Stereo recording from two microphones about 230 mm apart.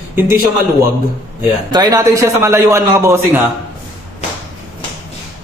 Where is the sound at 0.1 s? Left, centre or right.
Centre.